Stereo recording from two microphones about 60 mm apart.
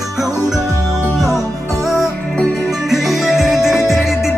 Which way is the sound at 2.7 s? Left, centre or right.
Centre.